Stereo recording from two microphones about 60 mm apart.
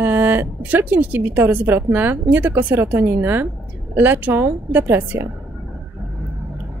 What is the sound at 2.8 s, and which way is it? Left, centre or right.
Speech, right.